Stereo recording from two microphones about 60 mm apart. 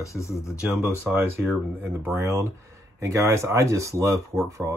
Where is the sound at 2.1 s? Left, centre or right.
Right.